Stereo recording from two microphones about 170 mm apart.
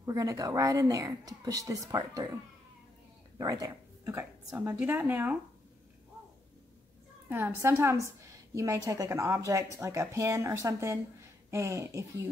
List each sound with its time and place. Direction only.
0.0 s speech: 20° right (ahead or behind)
3.3 s a woman's voice: 20° right (ahead or behind)
7.2 s a woman's voice: 15° right (ahead or behind)